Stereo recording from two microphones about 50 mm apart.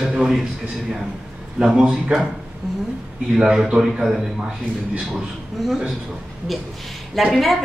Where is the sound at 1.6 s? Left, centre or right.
Centre.